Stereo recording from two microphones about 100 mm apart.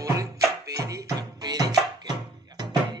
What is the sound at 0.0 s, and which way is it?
Music, 35° right (ahead or behind).